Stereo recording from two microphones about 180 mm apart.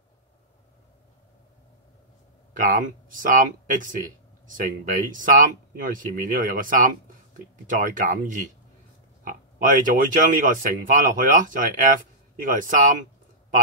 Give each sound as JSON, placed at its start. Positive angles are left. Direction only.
{"t": 2.5, "sound": "speech", "side_deg": -45}